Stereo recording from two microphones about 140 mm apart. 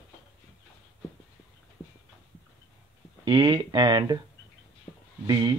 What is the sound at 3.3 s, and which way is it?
Speech, 35° right (ahead or behind).